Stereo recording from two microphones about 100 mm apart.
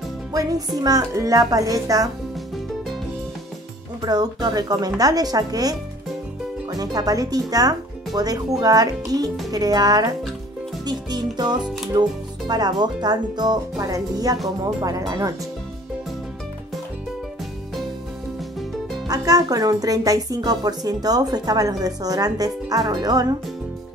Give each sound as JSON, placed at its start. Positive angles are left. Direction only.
{"t": 0.3, "sound": "music", "side_deg": -40}
{"t": 0.7, "sound": "speech", "side_deg": -40}
{"t": 4.0, "sound": "speech", "side_deg": -40}
{"t": 19.0, "sound": "speech", "side_deg": -40}